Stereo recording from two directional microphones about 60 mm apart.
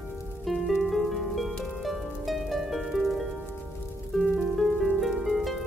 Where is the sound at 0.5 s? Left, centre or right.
Centre.